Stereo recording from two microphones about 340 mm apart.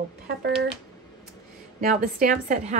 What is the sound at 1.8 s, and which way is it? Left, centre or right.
Speech, right.